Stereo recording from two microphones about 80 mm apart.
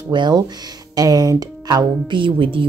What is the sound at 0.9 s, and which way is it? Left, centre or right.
Speech, right.